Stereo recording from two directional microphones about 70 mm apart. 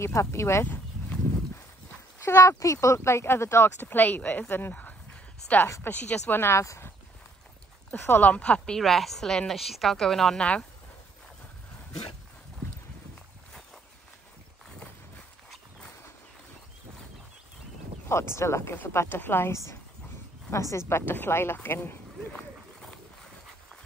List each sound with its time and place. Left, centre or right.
0.0 s speech: left
2.2 s speech: left
6.6 s speech: left
7.9 s speech: left
8.3 s a woman's voice: centre
18.0 s speech: left
20.9 s speech: left